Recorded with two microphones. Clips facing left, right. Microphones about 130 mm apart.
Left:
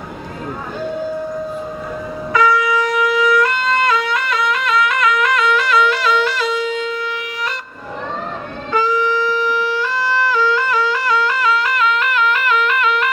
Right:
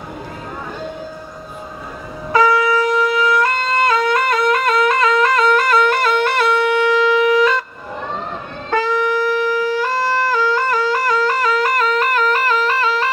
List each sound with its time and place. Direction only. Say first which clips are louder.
2.3 s shofar: right 1 dB; 30° right (ahead or behind); by 7.2 s 90° right
8.6 s wind instrument: even; 60° right (ahead or behind); by 13.1 s 35° right (ahead or behind)